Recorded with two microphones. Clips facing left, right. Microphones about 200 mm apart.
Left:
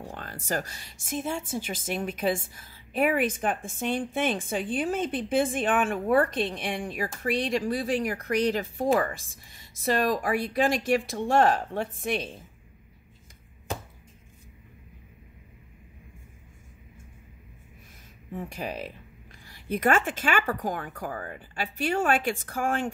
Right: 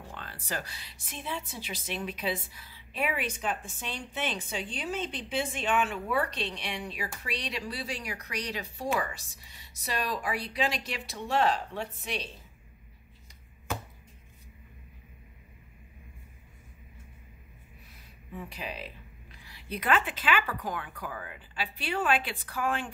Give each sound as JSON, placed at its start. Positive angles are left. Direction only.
{"t": 0.1, "sound": "a woman's voice", "side_deg": 45}
{"t": 18.3, "sound": "a woman's voice", "side_deg": 45}